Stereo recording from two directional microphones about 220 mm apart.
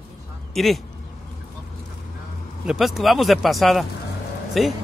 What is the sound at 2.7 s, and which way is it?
Speech, centre (ahead or behind).